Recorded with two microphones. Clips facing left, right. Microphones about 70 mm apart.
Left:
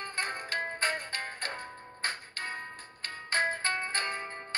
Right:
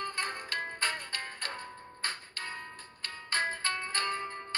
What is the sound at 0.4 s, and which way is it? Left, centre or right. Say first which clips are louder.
Music: left 2 dB; centre.